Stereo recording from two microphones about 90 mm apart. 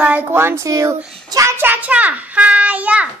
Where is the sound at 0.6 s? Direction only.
40° right (ahead or behind).